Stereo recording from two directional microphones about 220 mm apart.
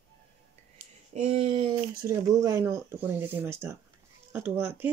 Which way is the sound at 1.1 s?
25° right (ahead or behind).